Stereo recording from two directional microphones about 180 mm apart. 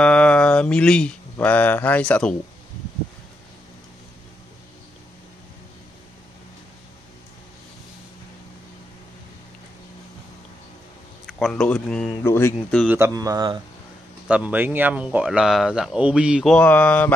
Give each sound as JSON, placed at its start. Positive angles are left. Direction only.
{"t": 0.0, "sound": "mantra", "side_deg": 5}
{"t": 11.2, "sound": "speech", "side_deg": 0}
{"t": 12.3, "sound": "mantra", "side_deg": 15}
{"t": 12.8, "sound": "speech", "side_deg": -10}
{"t": 14.2, "sound": "speech", "side_deg": -5}
{"t": 16.5, "sound": "mantra", "side_deg": 10}